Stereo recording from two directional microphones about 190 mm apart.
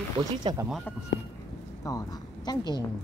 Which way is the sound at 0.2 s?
20° right (ahead or behind).